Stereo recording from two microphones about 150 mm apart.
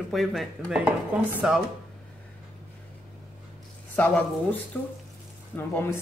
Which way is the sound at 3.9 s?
10° left (ahead or behind).